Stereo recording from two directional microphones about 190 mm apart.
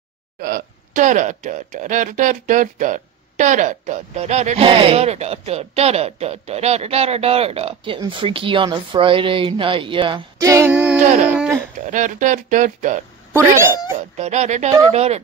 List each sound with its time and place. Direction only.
0.4 s speech: 45° right (ahead or behind); by 10.7 s 15° right (ahead or behind)
10.7 s a sound: 5° right (ahead or behind)
11.9 s speech: 40° right (ahead or behind)
13.4 s speech: 15° right (ahead or behind)
14.1 s speech: 35° right (ahead or behind)